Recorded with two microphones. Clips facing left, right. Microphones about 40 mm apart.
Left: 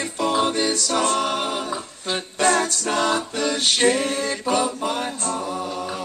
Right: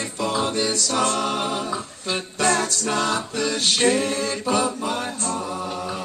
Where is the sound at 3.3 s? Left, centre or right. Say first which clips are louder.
Left 1 dB; left.